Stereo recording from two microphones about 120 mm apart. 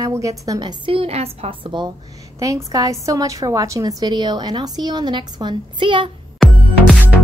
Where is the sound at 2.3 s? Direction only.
30° right (ahead or behind); by 6.1 s 45° right (ahead or behind).